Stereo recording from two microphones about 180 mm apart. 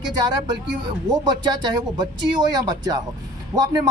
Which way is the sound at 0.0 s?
25° right (ahead or behind).